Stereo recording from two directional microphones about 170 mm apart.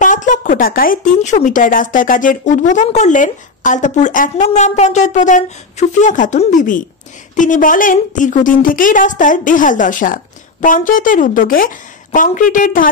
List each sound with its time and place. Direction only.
0.0 s speech: 50° left (ahead or behind)